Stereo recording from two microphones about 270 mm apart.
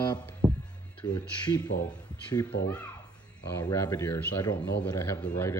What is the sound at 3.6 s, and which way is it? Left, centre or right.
Speech, centre.